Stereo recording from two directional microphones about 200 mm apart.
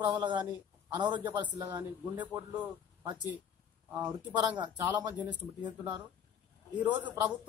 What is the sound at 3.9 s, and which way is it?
Speech, 10° right (ahead or behind).